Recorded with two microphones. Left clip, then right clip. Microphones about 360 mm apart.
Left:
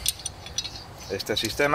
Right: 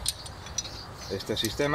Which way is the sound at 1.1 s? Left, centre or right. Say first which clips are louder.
Left 3 dB; left.